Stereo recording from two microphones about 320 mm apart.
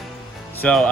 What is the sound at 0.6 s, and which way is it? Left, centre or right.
Speech, centre.